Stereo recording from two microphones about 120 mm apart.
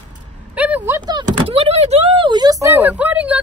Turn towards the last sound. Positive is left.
turn(degrees=-10)  # may be behind; listen again after turning